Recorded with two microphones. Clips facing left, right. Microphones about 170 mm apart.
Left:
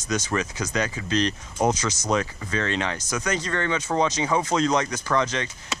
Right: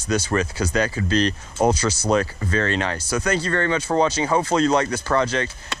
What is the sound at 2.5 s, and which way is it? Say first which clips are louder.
Speech: right 3 dB; 40° right (ahead or behind).